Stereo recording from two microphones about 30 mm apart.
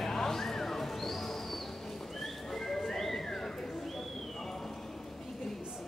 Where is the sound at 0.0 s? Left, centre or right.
Centre.